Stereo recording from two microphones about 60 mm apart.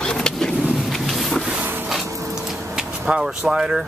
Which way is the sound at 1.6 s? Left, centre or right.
Right.